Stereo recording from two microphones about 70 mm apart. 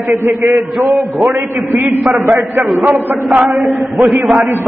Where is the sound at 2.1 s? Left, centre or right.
Right.